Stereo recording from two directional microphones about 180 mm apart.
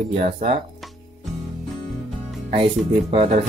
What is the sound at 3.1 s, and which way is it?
Speech, 35° right (ahead or behind).